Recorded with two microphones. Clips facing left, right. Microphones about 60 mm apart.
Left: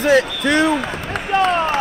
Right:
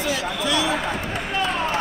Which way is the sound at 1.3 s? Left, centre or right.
Left.